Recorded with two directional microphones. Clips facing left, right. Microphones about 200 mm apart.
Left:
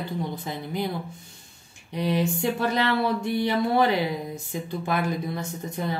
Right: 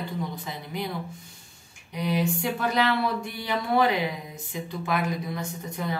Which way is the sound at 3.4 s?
30° left (ahead or behind).